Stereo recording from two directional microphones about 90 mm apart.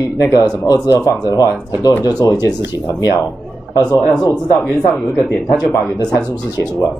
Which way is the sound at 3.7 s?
40° left (ahead or behind).